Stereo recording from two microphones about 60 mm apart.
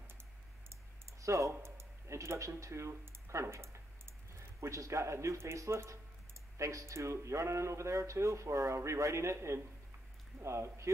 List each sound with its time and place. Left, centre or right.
1.2 s speech: right
1.5 s a sound: right
4.6 s speech: right